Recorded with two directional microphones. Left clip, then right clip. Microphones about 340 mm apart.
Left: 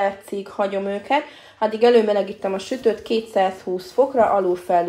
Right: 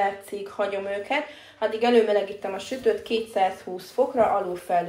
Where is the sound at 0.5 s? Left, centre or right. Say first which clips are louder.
Left 4 dB; left.